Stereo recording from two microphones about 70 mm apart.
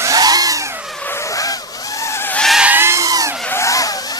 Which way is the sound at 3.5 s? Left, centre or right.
Left.